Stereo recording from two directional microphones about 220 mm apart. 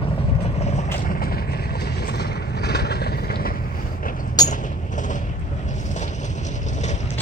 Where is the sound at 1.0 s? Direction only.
40° left (ahead or behind).